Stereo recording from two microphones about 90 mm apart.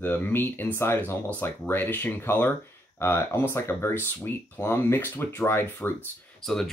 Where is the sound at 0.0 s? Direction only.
25° left (ahead or behind).